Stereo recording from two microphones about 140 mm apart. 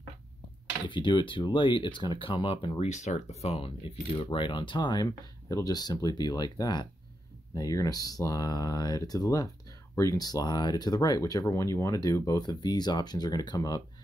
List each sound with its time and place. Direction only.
0.8 s speech: 35° left (ahead or behind)
2.8 s speech: 55° left (ahead or behind); by 13.8 s 30° left (ahead or behind)